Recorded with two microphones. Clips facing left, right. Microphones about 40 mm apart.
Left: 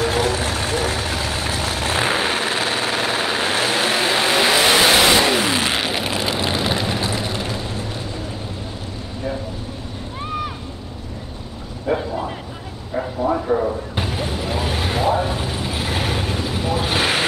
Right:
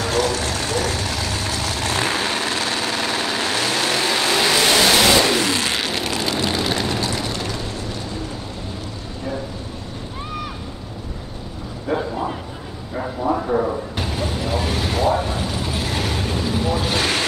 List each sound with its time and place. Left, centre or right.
0.0 s vehicle: centre
11.9 s bow-wow: centre
13.5 s a sound: centre
14.0 s vehicle: centre